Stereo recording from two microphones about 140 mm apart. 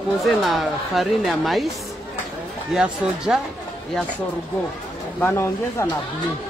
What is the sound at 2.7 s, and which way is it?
Speech, 5° right (ahead or behind).